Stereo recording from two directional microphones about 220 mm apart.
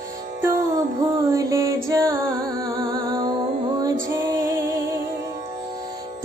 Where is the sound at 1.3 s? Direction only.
15° right (ahead or behind).